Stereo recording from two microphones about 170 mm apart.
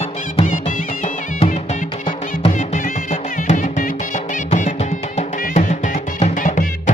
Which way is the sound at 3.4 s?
50° left (ahead or behind).